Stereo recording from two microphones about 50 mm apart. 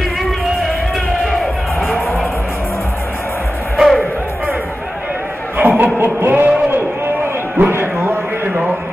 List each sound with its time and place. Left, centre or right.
1.2 s music: centre
3.7 s music: centre
5.6 s chuckle: right
5.9 s music: right
7.5 s a sound: right